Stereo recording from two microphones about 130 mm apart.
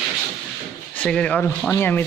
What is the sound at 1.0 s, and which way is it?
A man's voice, 10° left (ahead or behind).